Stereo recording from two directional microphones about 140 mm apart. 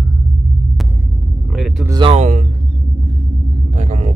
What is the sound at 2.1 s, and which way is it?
Speech, 60° right (ahead or behind).